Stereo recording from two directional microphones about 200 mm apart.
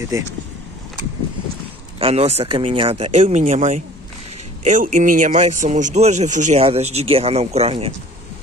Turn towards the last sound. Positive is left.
turn(degrees=-30)  # may be behind; listen again after turning